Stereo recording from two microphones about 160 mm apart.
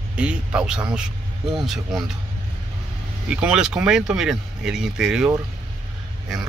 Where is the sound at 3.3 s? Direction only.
5° right (ahead or behind).